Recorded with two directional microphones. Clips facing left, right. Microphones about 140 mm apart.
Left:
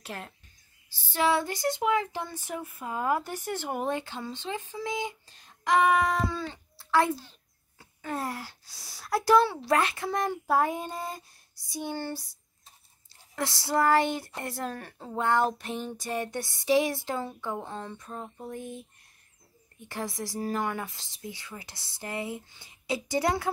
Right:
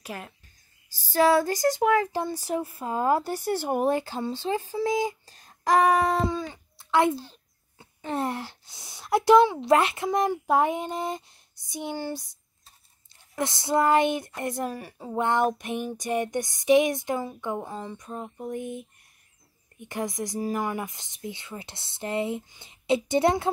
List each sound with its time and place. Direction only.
0.0 s speech: 10° right (ahead or behind)
0.8 s speech: 40° right (ahead or behind)
6.2 s speech: 15° right (ahead or behind)
13.4 s speech: 20° right (ahead or behind)